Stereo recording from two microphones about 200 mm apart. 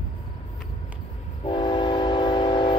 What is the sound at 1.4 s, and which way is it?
Train, 25° left (ahead or behind).